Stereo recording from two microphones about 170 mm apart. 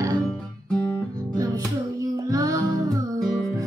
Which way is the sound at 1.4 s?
20° right (ahead or behind).